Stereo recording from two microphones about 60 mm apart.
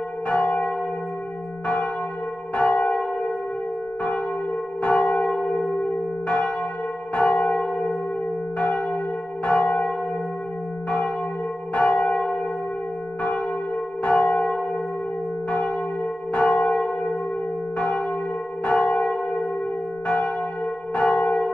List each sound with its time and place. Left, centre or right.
0.3 s church bell: centre
2.5 s church bell: left
4.8 s church bell: left
11.7 s church bell: centre
14.0 s church bell: left
16.3 s church bell: centre
20.9 s church bell: centre